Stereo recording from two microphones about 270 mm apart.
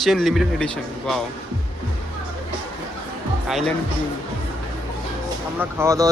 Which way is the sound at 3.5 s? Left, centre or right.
Centre.